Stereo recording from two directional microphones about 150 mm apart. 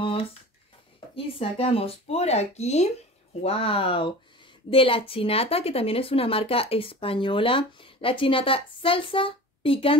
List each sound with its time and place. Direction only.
1.1 s a woman's voice: 40° left (ahead or behind)